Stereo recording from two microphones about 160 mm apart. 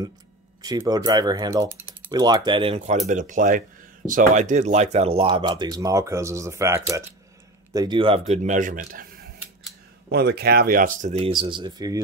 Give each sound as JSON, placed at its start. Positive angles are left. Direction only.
{"t": 0.6, "sound": "speech", "side_deg": -25}
{"t": 3.1, "sound": "speech", "side_deg": -50}
{"t": 10.1, "sound": "speech", "side_deg": -85}
{"t": 11.1, "sound": "speech", "side_deg": -40}